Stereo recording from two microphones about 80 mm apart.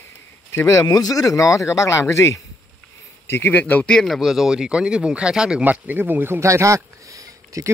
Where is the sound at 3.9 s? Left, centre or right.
Centre.